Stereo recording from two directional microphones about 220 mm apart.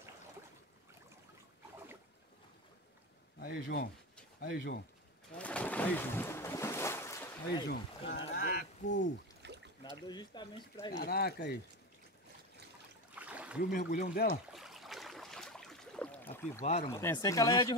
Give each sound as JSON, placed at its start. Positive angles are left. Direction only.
{"t": 3.3, "sound": "speech", "side_deg": 45}
{"t": 5.4, "sound": "boat", "side_deg": 5}
{"t": 8.1, "sound": "a sound", "side_deg": 50}
{"t": 9.4, "sound": "boat", "side_deg": -50}
{"t": 10.0, "sound": "speech", "side_deg": 20}
{"t": 10.9, "sound": "speech", "side_deg": 45}
{"t": 13.1, "sound": "a sound", "side_deg": -5}
{"t": 13.7, "sound": "speech", "side_deg": 45}
{"t": 14.5, "sound": "a sound", "side_deg": 0}
{"t": 16.6, "sound": "speech", "side_deg": 30}
{"t": 16.9, "sound": "speech", "side_deg": 10}